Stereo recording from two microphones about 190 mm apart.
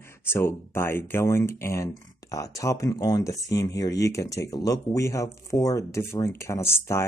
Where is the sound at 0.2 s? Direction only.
15° left (ahead or behind).